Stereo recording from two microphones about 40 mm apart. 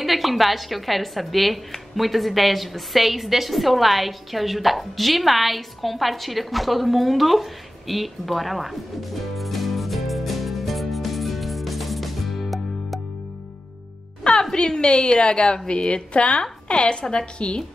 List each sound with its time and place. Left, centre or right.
0.0 s speech: centre
14.4 s a woman's voice: centre